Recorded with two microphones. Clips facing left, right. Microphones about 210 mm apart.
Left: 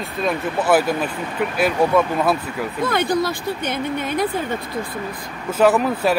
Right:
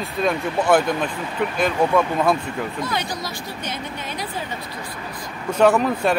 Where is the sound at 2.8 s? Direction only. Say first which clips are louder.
Left 7 dB; 55° left (ahead or behind).